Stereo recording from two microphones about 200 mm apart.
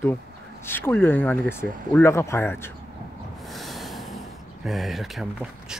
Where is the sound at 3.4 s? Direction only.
Centre (ahead or behind).